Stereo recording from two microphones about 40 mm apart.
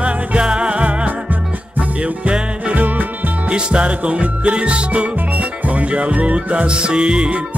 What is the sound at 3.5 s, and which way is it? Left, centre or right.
Music, right.